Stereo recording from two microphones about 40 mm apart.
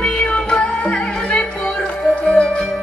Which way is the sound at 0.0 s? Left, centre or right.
Left.